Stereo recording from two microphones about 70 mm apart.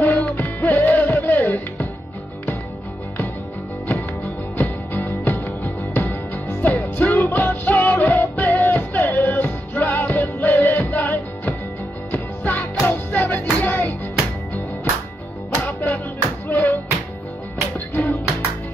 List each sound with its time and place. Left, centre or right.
0.0 s music: left
4.6 s music: left
15.6 s music: left
17.7 s music: left